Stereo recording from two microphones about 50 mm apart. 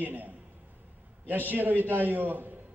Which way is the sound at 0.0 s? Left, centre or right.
Right.